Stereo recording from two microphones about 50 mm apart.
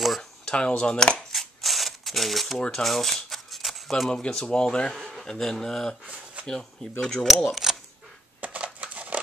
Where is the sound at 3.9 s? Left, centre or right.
Centre.